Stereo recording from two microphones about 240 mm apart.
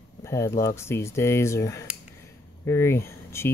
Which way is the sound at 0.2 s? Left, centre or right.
Centre.